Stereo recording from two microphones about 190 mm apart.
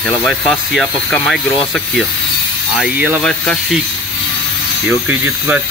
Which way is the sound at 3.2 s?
5° left (ahead or behind).